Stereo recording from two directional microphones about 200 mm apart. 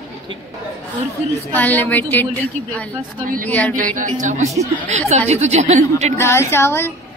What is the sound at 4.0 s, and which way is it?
A woman's voice, 40° right (ahead or behind).